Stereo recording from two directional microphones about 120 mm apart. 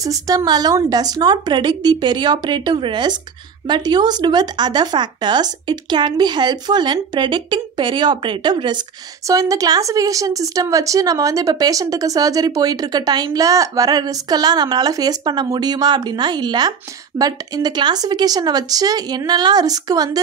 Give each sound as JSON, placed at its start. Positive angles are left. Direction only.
{"t": 0.0, "sound": "speech", "side_deg": -30}
{"t": 9.3, "sound": "speech", "side_deg": -30}